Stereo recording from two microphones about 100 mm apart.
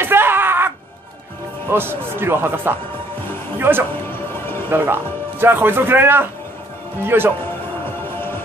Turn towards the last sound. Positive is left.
turn(degrees=-20)  # may be behind; listen again after turning